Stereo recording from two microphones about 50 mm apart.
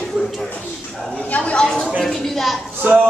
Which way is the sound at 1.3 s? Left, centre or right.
Left.